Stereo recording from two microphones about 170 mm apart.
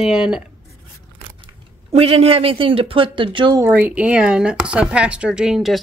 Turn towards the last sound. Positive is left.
turn(degrees=0)  # may be behind; listen again after turning